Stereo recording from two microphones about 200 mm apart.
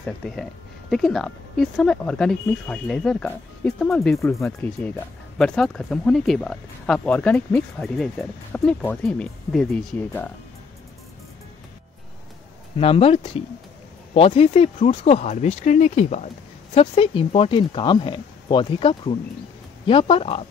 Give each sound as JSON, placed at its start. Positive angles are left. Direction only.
{"t": 0.0, "sound": "speech", "side_deg": 5}
{"t": 4.2, "sound": "speech", "side_deg": 15}
{"t": 12.7, "sound": "speech", "side_deg": 30}